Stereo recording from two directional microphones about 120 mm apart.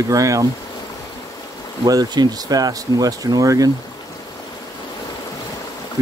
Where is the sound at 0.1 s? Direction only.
30° right (ahead or behind).